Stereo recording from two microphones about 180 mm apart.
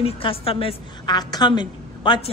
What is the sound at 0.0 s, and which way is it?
A man's voice, 30° left (ahead or behind).